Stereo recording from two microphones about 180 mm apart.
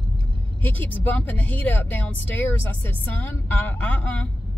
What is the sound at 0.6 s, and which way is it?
Speech, 10° left (ahead or behind).